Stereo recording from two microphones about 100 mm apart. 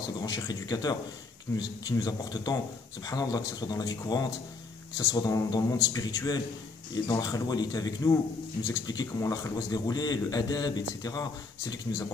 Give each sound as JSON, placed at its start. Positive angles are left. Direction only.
{"t": 0.2, "sound": "speech", "side_deg": 40}